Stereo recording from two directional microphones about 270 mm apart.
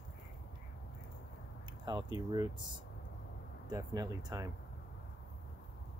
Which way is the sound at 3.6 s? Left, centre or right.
Centre.